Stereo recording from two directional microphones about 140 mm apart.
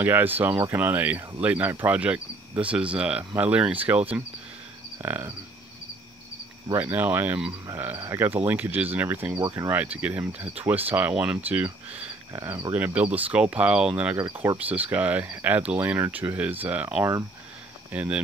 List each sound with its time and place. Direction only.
0.0 s speech: 15° right (ahead or behind)
6.7 s speech: 15° right (ahead or behind)
12.3 s speech: 25° right (ahead or behind)
12.7 s speech: 10° right (ahead or behind)